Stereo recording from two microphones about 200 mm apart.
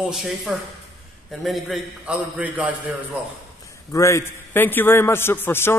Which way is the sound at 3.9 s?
15° left (ahead or behind).